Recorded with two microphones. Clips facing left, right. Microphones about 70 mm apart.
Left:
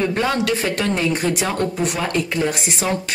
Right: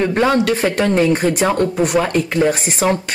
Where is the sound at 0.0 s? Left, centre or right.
Right.